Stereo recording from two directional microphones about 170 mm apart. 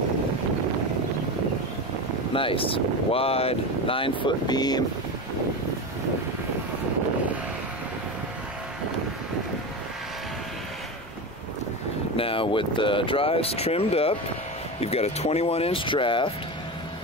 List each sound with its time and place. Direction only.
2.3 s speech: 30° left (ahead or behind)
12.2 s speech: 30° left (ahead or behind)